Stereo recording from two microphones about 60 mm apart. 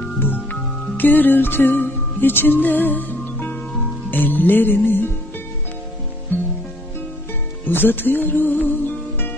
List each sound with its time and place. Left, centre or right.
0.2 s music: left
7.6 s music: left